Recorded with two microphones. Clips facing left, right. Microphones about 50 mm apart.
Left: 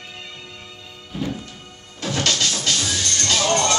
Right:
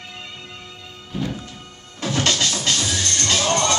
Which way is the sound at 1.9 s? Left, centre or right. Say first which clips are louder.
Right 1 dB; centre.